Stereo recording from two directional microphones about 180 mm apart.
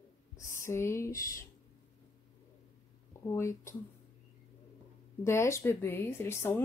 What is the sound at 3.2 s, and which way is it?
Speech, 15° left (ahead or behind).